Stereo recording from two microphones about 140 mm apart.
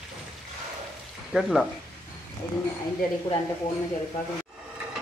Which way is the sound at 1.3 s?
Centre (ahead or behind).